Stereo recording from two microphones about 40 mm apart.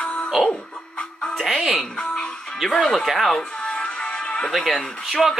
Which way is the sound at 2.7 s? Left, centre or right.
Centre.